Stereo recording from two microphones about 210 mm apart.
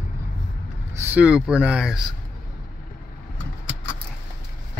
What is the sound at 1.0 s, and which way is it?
Speech, 5° right (ahead or behind).